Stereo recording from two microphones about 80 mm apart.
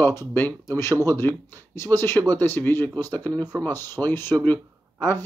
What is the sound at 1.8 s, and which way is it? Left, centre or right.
Speech, left.